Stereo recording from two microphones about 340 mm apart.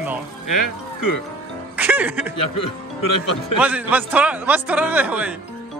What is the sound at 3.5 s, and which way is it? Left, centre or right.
A man's voice, centre.